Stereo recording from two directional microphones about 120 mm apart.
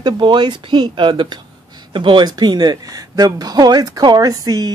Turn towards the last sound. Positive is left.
turn(degrees=-30)  # may be behind; listen again after turning